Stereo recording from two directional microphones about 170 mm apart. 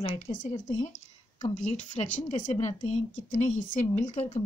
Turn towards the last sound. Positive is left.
turn(degrees=40)  # may be behind; listen again after turning